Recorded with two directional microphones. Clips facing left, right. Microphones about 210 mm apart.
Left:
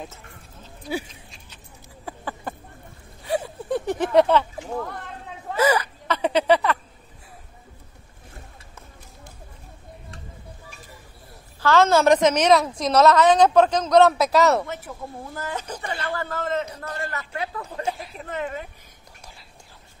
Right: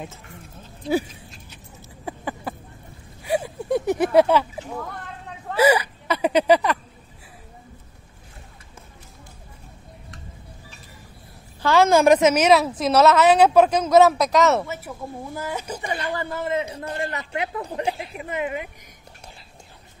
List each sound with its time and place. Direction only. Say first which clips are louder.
3.3 s a sound: right 2 dB; 10° right (ahead or behind)
5.5 s speech: right 3 dB; 10° right (ahead or behind)
11.6 s a woman's voice: right 1 dB; 15° right (ahead or behind)
16.6 s a woman's voice: right 4 dB; 30° right (ahead or behind); by 18.7 s 10° right (ahead or behind)